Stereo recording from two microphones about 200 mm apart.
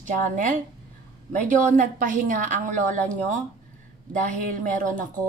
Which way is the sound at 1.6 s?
40° right (ahead or behind).